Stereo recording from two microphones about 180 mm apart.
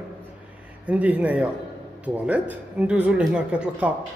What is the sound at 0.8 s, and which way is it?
Speech, 10° right (ahead or behind).